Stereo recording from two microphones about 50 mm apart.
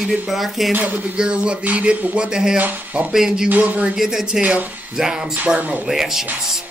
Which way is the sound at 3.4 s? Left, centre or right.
Right.